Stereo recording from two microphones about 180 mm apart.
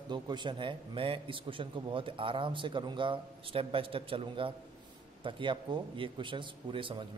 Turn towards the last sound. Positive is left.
turn(degrees=-25)  # may be behind; listen again after turning